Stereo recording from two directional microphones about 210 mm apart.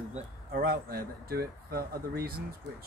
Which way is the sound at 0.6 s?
45° right (ahead or behind).